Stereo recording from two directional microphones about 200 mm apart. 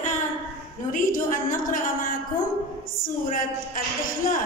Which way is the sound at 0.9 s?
40° left (ahead or behind).